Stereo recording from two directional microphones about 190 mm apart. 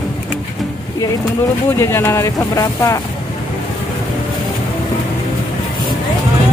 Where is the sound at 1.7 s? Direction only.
15° left (ahead or behind).